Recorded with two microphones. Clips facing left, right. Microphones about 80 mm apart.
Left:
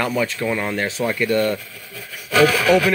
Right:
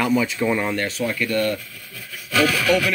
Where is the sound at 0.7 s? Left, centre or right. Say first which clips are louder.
Left 2 dB; centre.